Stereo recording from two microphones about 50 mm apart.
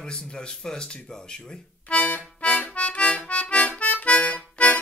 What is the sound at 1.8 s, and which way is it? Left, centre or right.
Harmonica, left.